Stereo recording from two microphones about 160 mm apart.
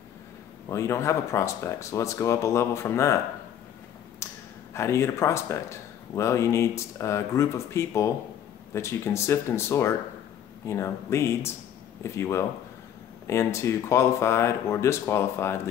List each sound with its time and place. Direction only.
0.7 s speech: 15° left (ahead or behind)
4.2 s a sound: 15° left (ahead or behind)
4.7 s speech: 15° left (ahead or behind)